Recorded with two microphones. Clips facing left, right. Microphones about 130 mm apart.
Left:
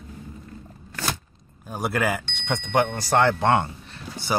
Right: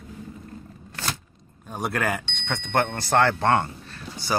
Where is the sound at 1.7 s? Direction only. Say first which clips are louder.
Left 2 dB; 5° left (ahead or behind).